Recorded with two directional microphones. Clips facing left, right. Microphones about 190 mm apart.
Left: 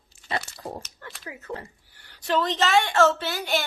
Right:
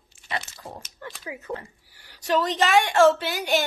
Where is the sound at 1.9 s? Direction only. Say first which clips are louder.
Right 1 dB; 10° right (ahead or behind).